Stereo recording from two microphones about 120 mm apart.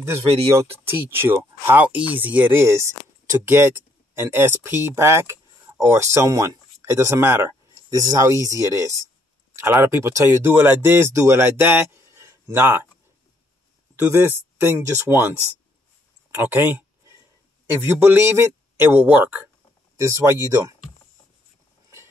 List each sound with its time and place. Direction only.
0.6 s speech: 20° right (ahead or behind)
13.9 s speech: 20° right (ahead or behind)
16.3 s a sound: 20° right (ahead or behind)
17.9 s speech: 15° right (ahead or behind)